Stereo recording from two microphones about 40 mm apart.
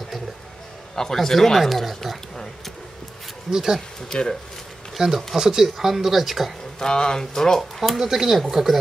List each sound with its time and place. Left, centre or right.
0.9 s speech: centre
3.5 s speech: centre
4.1 s speech: centre
4.9 s speech: centre
6.8 s speech: centre
8.0 s speech: centre